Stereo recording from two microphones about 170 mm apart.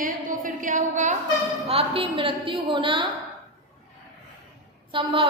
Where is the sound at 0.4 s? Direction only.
50° right (ahead or behind).